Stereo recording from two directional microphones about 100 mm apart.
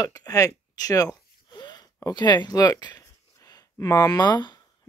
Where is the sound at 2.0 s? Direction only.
45° left (ahead or behind).